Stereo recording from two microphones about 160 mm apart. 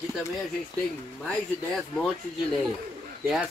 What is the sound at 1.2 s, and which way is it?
Speech, 5° left (ahead or behind).